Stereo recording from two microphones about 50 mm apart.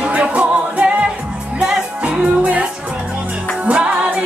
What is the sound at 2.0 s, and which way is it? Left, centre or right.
Music, right.